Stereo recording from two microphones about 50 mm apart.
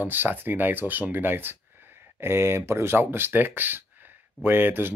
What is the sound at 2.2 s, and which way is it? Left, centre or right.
Speech, right.